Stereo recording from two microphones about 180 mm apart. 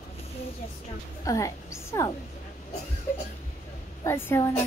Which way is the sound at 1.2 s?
20° left (ahead or behind).